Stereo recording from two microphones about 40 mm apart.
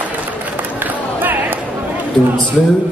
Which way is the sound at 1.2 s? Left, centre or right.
Right.